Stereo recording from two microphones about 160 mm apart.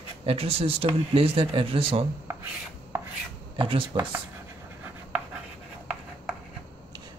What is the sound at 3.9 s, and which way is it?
Dishes, 35° right (ahead or behind).